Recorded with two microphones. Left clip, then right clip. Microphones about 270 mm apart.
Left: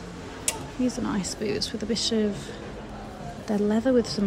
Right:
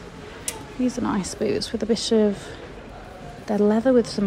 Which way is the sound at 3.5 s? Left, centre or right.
Centre.